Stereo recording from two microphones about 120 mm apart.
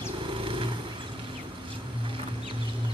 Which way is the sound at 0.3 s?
45° right (ahead or behind).